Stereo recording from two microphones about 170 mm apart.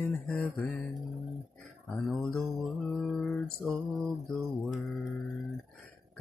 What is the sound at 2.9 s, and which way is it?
Music, centre (ahead or behind).